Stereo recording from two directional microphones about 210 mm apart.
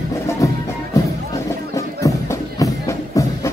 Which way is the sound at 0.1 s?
15° left (ahead or behind).